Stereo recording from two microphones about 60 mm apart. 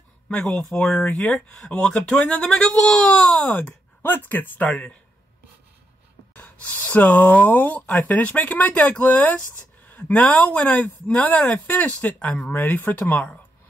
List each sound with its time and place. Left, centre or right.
0.5 s speech: centre
3.3 s speech: left
6.3 s speech: left
9.8 s a sound: left
10.3 s speech: left
12.5 s speech: left